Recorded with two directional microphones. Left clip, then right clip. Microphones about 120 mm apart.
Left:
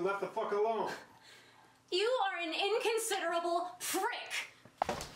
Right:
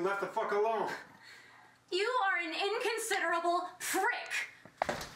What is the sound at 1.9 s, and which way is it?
A woman's voice, 5° left (ahead or behind).